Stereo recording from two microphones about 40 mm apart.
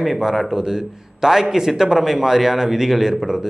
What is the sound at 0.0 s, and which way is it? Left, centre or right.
Speech, centre.